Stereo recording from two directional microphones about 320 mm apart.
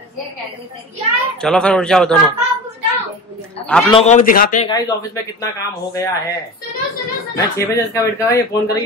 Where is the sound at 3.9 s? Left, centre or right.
Left.